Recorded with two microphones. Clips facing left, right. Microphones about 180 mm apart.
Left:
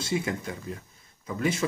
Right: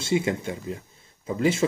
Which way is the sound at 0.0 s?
25° right (ahead or behind).